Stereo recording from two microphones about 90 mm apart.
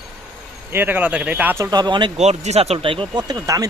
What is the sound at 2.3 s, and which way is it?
Speech, 90° right.